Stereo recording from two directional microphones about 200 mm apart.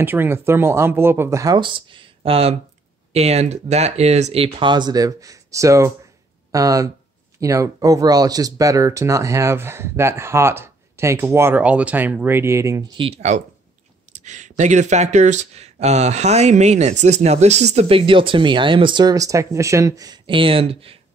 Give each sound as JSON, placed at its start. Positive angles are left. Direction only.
{"t": 0.0, "sound": "speech", "side_deg": -10}
{"t": 14.1, "sound": "a sound", "side_deg": -35}
{"t": 14.6, "sound": "speech", "side_deg": -35}